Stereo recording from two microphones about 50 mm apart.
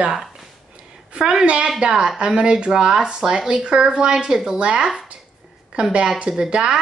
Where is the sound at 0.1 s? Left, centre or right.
Centre.